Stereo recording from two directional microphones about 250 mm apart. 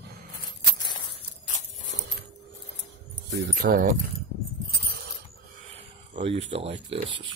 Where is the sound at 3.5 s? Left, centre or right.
Right.